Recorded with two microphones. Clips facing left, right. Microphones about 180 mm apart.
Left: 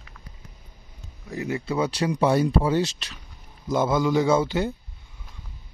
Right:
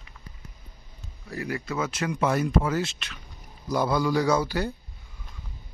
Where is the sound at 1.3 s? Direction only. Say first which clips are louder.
Left 4 dB; 20° left (ahead or behind).